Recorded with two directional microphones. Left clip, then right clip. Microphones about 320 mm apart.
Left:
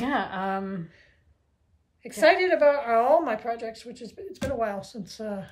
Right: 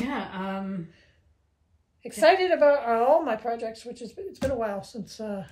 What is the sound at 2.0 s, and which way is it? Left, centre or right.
A woman's voice, centre.